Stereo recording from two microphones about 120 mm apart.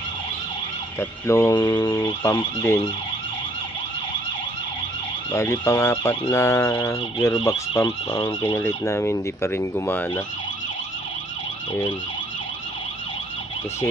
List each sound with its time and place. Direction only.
0.9 s fowl: 25° left (ahead or behind)
5.3 s fowl: 25° left (ahead or behind)
8.5 s speech: 20° left (ahead or behind)